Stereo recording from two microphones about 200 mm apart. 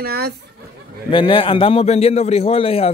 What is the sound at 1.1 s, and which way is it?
A man's voice, 25° left (ahead or behind).